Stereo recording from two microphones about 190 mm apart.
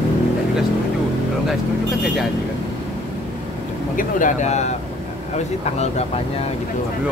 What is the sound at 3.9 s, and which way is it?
Speech, 45° left (ahead or behind).